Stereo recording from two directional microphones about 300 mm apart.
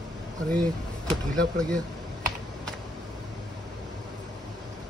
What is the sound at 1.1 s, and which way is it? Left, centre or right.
Speech, centre.